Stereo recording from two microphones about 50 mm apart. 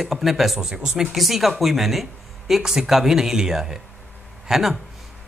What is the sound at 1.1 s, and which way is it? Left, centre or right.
Speech, centre.